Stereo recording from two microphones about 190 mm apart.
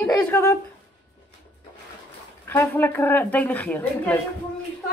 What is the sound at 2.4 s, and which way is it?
A woman's voice, 10° left (ahead or behind).